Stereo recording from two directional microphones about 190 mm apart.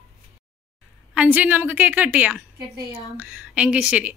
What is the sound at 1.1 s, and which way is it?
A woman's voice, 5° right (ahead or behind).